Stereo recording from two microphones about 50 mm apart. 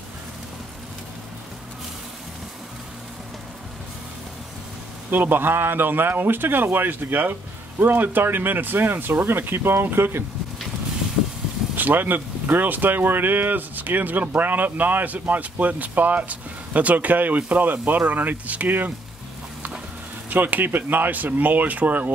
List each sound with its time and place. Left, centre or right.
5.1 s a man's voice: right
11.7 s speech: right
20.2 s speech: right